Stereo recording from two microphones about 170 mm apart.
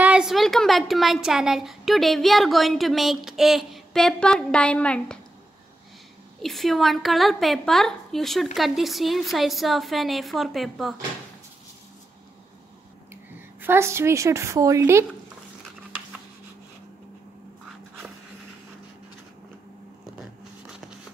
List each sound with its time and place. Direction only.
0.0 s a child's voice: 5° right (ahead or behind)
6.4 s a woman's voice: centre (ahead or behind)
13.1 s a woman's voice: 15° right (ahead or behind)
20.2 s a sound: 5° right (ahead or behind)